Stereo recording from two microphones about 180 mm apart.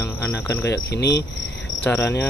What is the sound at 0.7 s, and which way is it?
Cricket, 70° left (ahead or behind).